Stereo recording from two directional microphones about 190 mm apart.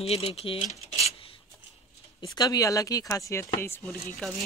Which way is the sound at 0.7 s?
35° left (ahead or behind).